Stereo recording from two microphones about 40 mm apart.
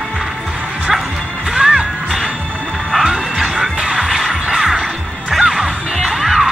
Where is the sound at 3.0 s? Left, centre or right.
Centre.